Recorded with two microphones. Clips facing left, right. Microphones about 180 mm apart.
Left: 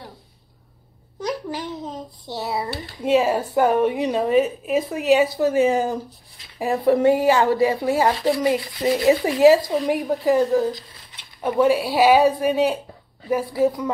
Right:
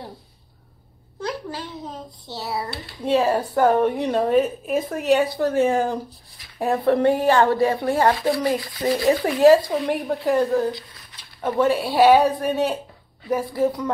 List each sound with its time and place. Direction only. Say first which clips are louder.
1.2 s a sound: left 2 dB; 15° left (ahead or behind)
2.2 s a woman's voice: left 2 dB; 15° left (ahead or behind)
9.0 s a woman's voice: left 1 dB; centre (ahead or behind)